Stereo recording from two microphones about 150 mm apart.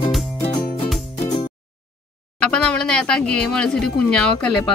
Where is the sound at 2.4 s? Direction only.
5° left (ahead or behind).